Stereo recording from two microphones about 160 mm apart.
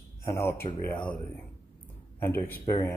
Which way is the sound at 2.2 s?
15° left (ahead or behind).